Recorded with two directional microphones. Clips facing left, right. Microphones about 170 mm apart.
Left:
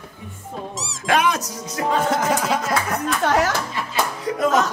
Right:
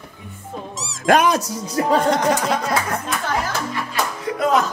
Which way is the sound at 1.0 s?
40° right (ahead or behind).